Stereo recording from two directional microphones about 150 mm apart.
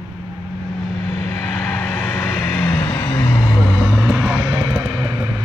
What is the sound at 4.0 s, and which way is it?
Vehicle, 5° right (ahead or behind).